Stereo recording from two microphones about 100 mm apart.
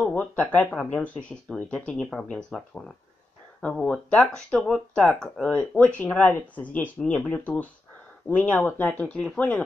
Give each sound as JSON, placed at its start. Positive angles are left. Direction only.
{"t": 0.1, "sound": "speech", "side_deg": 15}